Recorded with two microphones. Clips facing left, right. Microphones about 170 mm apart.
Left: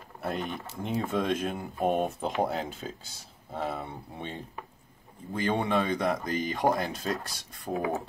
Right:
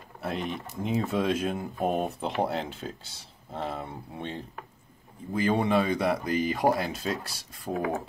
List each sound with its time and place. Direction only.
0.2 s speech: centre (ahead or behind)
7.7 s speech: 20° left (ahead or behind)